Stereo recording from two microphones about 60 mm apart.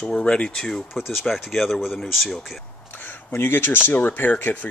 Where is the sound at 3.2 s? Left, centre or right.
Left.